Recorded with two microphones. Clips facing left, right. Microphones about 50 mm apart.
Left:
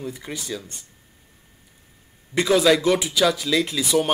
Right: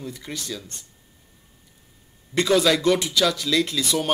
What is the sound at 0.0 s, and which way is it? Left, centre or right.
Speech, centre.